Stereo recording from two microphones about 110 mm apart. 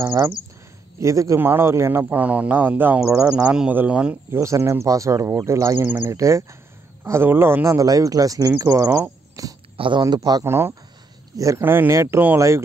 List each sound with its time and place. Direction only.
0.0 s speech: 20° right (ahead or behind)
4.3 s speech: 25° right (ahead or behind)
9.8 s speech: 45° right (ahead or behind)
10.4 s speech: 25° right (ahead or behind)